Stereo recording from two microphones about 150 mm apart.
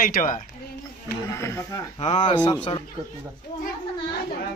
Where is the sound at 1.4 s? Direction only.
20° left (ahead or behind).